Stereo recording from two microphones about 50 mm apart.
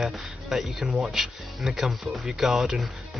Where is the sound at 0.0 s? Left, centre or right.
Centre.